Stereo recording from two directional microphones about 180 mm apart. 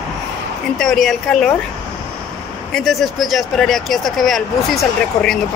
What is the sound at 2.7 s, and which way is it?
Speech, centre (ahead or behind).